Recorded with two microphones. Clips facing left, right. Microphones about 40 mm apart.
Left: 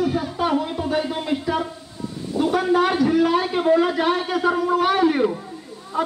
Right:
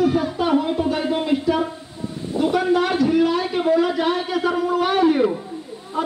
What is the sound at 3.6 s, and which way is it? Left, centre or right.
A woman's voice, centre.